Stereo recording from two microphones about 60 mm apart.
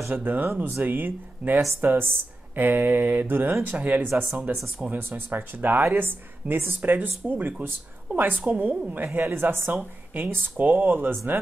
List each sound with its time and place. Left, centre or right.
0.1 s speech: right
4.1 s speech: right
9.8 s speech: right